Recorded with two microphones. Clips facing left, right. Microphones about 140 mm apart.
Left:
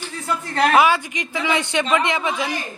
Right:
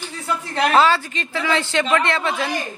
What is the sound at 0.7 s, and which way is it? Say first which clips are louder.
A woman's voice: right 2 dB; 15° left (ahead or behind).